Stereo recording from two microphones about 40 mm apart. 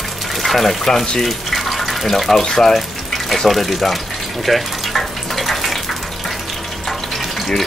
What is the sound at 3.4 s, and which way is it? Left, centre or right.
Speech, centre.